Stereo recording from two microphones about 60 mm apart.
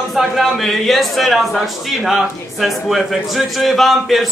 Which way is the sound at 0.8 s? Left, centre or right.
Centre.